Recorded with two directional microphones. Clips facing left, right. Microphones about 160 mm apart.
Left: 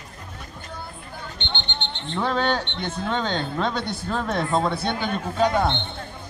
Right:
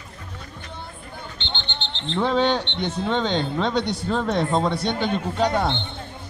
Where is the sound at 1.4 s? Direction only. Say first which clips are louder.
Left 2 dB; 15° left (ahead or behind).